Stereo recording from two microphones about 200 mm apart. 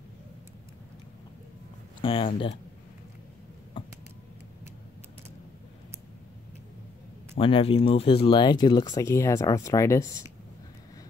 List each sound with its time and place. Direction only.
2.0 s speech: 25° left (ahead or behind)
3.8 s a sound: 25° left (ahead or behind)
7.3 s speech: 25° left (ahead or behind)